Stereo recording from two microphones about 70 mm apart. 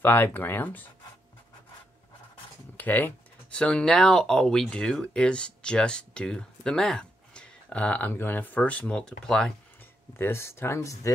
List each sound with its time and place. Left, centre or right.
0.0 s speech: left
2.8 s speech: left
3.5 s speech: centre
8.1 s speech: left; by 9.5 s centre
10.1 s speech: left
10.9 s speech: left